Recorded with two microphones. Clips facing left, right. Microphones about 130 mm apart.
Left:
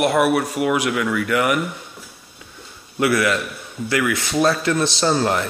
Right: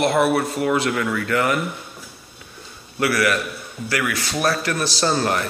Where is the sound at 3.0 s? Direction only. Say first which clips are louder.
Left 2 dB; 20° left (ahead or behind).